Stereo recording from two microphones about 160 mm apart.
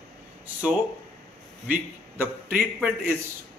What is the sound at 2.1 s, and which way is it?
A man's voice, 10° right (ahead or behind).